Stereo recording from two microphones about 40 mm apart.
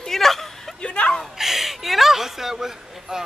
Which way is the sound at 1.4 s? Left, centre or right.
Centre.